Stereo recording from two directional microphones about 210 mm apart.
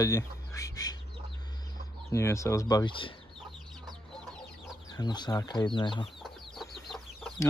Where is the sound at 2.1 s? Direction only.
15° left (ahead or behind).